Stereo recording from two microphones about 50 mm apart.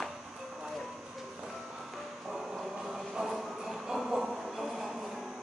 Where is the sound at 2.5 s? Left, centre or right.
Centre.